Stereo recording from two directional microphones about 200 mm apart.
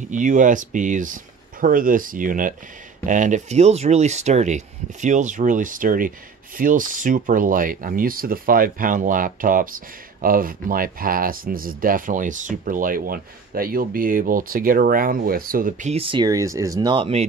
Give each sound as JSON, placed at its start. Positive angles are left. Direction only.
{"t": 0.1, "sound": "speech", "side_deg": -40}